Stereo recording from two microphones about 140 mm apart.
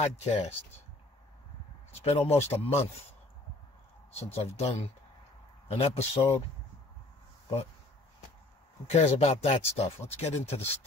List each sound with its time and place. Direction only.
0.0 s speech: 50° left (ahead or behind)
1.9 s speech: 45° left (ahead or behind)
4.4 s speech: 50° left (ahead or behind)
8.8 s speech: 50° left (ahead or behind)